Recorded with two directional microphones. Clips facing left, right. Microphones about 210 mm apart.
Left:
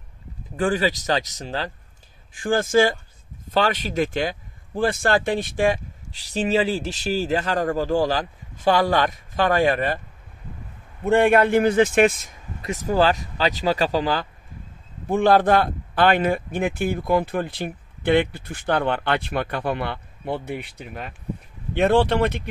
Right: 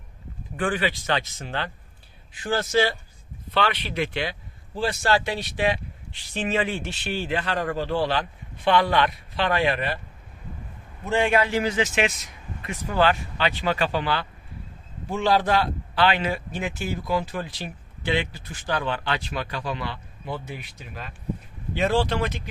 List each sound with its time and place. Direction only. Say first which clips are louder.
0.6 s speech: left 4 dB; 40° left (ahead or behind)
2.3 s speech: left 4 dB; 50° left (ahead or behind)
6.2 s speech: left 5 dB; 35° left (ahead or behind)
11.1 s speech: left 6 dB; 55° left (ahead or behind); by 14.2 s 40° left (ahead or behind)
15.0 s speech: left 5 dB; 55° left (ahead or behind)